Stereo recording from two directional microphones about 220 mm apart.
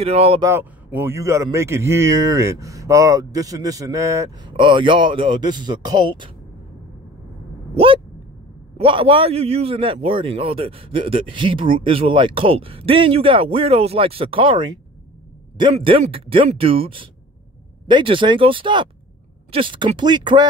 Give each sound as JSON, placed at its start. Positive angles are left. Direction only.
{"t": 0.0, "sound": "a man's voice", "side_deg": -25}
{"t": 0.5, "sound": "speech", "side_deg": -10}
{"t": 7.7, "sound": "a sound", "side_deg": -25}
{"t": 8.7, "sound": "a man's voice", "side_deg": -25}